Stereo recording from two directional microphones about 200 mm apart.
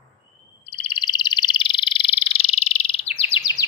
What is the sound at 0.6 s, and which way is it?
Frog, 25° left (ahead or behind).